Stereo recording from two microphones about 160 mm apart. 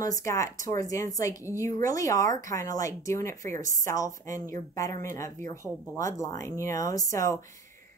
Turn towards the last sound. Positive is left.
turn(degrees=20)  # may be behind; listen again after turning